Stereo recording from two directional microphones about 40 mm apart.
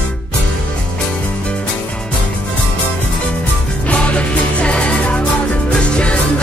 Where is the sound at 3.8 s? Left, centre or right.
Left.